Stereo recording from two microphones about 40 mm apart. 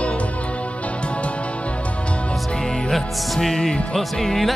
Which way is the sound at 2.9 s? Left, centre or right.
Centre.